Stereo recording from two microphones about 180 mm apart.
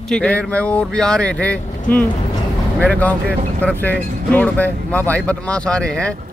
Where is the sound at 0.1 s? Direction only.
5° left (ahead or behind).